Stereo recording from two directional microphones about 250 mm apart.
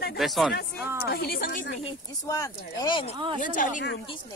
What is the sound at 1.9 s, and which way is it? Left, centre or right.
Speech, centre.